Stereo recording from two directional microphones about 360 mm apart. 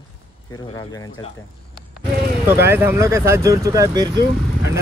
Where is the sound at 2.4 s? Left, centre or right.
Centre.